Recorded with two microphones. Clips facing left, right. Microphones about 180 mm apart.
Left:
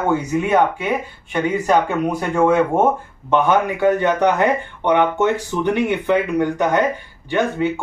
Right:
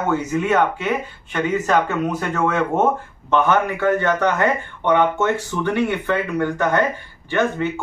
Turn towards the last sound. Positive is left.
turn(degrees=15)  # may be behind; listen again after turning